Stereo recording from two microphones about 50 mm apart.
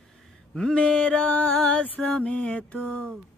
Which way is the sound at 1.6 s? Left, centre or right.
Left.